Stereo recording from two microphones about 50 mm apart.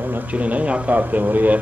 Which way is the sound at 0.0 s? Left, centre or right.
Right.